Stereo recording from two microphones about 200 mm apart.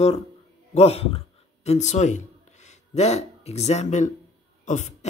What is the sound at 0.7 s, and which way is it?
Speech, 30° left (ahead or behind).